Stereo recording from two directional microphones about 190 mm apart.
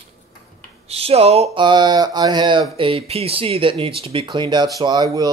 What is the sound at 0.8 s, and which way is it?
Speech, 30° right (ahead or behind).